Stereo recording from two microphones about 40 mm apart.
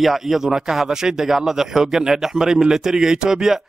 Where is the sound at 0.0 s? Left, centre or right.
Centre.